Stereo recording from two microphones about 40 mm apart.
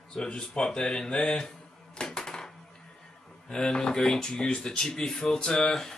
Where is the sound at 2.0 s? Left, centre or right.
Centre.